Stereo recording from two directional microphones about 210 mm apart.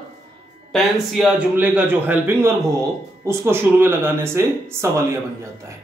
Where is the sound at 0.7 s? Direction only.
Centre (ahead or behind).